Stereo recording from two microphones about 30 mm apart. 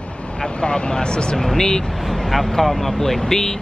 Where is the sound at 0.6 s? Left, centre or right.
Left.